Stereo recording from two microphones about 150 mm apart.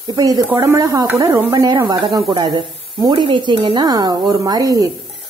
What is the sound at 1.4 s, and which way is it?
Speech, 30° right (ahead or behind).